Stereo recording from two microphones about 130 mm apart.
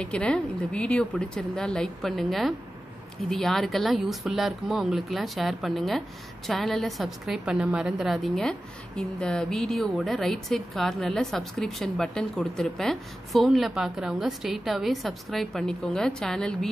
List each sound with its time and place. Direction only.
0.0 s a woman's voice: 10° left (ahead or behind)